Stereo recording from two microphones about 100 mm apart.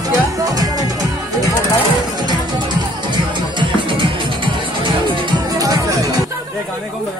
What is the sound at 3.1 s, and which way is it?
Music, 55° right (ahead or behind).